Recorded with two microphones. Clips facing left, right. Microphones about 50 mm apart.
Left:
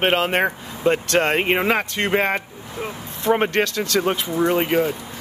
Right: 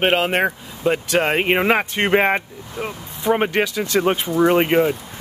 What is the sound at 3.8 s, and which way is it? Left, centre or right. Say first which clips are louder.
Speech: right 2 dB; centre.